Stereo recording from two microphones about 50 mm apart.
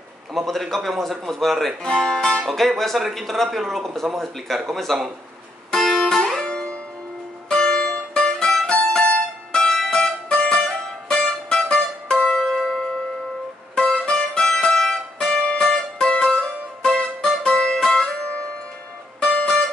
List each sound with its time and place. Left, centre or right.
0.3 s speech: centre
5.7 s music: centre
6.4 s music: centre
19.2 s music: centre